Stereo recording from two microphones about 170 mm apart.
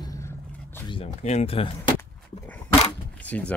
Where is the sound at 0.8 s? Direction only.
35° left (ahead or behind).